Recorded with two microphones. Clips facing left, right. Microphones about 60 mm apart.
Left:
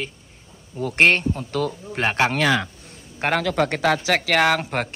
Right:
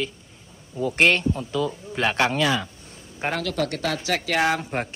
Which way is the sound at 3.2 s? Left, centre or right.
Left.